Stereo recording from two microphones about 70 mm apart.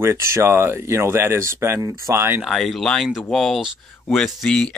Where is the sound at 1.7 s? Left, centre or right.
Right.